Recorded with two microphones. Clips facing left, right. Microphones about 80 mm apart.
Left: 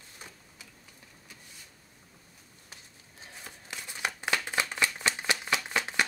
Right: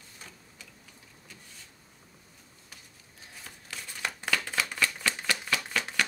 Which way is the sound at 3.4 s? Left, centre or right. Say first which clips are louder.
Even; left.